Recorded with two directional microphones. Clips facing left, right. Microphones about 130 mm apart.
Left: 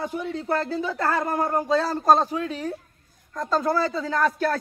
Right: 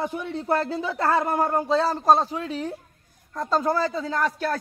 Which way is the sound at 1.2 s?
10° right (ahead or behind).